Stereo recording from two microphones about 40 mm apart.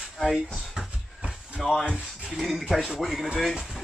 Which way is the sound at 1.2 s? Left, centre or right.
Right.